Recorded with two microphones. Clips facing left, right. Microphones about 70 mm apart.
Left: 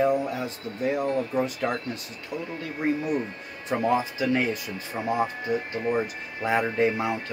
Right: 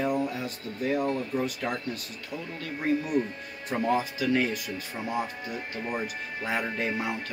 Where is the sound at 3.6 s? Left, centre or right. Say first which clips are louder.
Left 3 dB; left.